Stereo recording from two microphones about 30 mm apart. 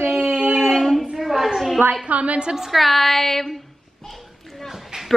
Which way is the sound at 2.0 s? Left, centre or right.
Right.